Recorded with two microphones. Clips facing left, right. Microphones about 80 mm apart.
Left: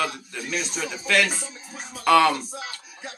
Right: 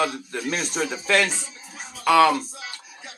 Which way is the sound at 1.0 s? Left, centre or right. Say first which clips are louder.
Even; right.